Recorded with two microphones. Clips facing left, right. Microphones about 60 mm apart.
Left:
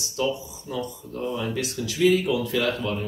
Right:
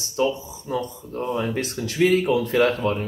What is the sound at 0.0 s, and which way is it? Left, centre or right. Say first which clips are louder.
Speech: right 3 dB; right.